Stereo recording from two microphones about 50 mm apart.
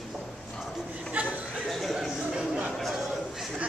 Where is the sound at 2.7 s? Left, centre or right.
Centre.